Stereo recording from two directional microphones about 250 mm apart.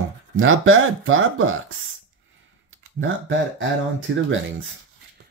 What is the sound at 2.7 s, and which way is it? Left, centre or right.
Speech, right.